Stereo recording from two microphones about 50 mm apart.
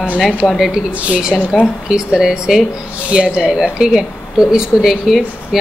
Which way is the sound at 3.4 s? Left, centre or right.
Centre.